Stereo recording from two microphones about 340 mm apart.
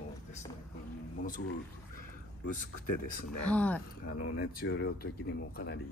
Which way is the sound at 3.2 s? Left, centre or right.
Left.